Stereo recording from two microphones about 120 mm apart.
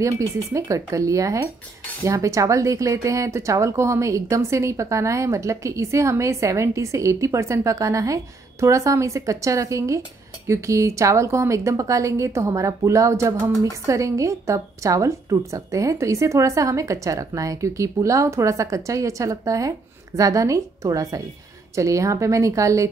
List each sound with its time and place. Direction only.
0.0 s speech: 25° right (ahead or behind)